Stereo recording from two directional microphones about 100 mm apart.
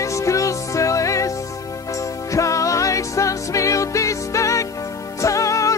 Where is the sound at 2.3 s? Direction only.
30° left (ahead or behind).